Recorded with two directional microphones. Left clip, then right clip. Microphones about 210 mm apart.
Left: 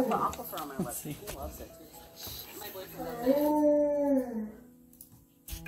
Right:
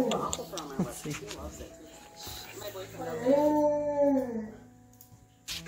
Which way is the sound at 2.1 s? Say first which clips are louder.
Right 2 dB; 50° left (ahead or behind).